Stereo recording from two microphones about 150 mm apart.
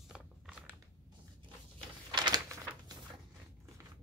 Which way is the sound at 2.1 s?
30° right (ahead or behind).